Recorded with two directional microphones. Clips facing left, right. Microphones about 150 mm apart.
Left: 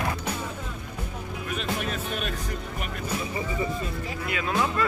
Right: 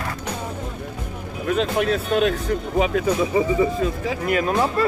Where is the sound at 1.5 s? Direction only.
90° right.